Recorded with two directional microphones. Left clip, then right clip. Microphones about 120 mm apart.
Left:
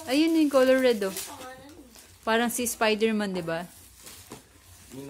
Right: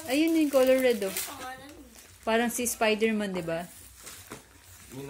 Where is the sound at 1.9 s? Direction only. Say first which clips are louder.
Left 2 dB; 5° left (ahead or behind).